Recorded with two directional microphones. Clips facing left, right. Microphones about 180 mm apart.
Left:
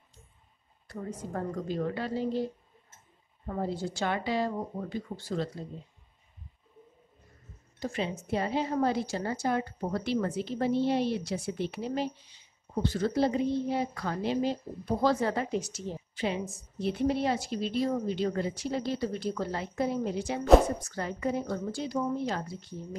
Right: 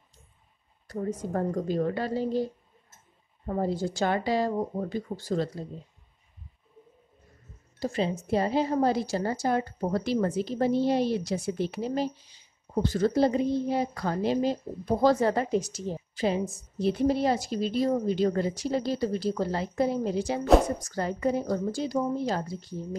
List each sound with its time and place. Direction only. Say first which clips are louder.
0.8 s a woman's voice: right 6 dB; 40° right (ahead or behind)
3.4 s a woman's voice: right 4 dB; 40° right (ahead or behind)
7.8 s a woman's voice: right 5 dB; 35° right (ahead or behind)